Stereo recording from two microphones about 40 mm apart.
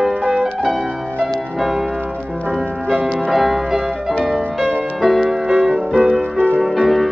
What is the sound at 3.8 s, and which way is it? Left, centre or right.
Music, centre.